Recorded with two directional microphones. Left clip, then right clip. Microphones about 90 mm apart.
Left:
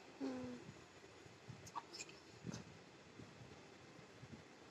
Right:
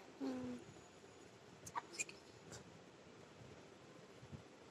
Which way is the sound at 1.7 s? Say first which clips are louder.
Right 4 dB; 30° left (ahead or behind).